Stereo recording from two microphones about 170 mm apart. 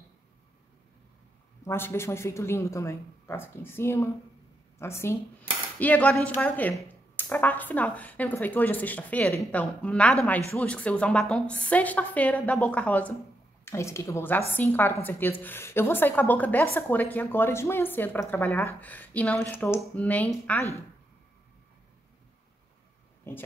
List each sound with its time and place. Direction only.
1.6 s a woman's voice: 15° left (ahead or behind)
23.3 s a woman's voice: 15° left (ahead or behind)